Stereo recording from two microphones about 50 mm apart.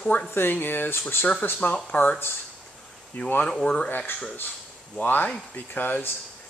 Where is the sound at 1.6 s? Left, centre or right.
Left.